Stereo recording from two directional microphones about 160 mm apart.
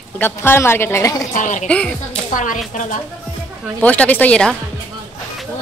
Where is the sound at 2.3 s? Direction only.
55° left (ahead or behind).